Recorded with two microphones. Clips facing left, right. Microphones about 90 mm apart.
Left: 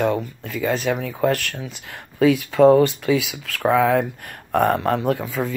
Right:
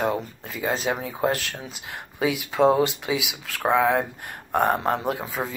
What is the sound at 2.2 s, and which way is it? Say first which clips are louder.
Speech: left 6 dB; 15° right (ahead or behind).